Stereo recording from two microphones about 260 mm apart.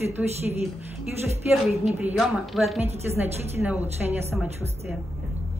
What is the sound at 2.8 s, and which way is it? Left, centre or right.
A woman's voice, right.